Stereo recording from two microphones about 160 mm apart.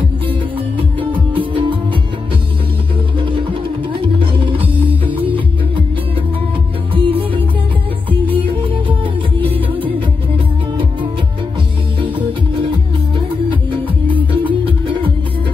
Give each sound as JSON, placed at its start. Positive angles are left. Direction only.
{"t": 1.3, "sound": "music", "side_deg": -30}
{"t": 3.2, "sound": "music", "side_deg": -30}
{"t": 6.9, "sound": "music", "side_deg": -35}
{"t": 8.5, "sound": "music", "side_deg": -30}
{"t": 14.4, "sound": "music", "side_deg": -30}